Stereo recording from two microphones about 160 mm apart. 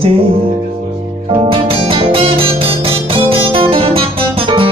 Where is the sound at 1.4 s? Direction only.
35° right (ahead or behind).